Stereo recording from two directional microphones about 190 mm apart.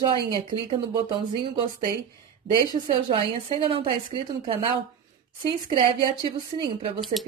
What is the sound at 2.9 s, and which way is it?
Speech, 25° right (ahead or behind).